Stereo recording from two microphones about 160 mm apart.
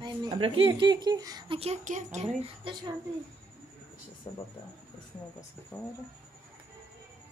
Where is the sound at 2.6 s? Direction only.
30° right (ahead or behind).